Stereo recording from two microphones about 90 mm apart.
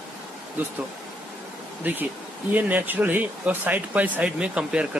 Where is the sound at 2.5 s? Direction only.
20° right (ahead or behind).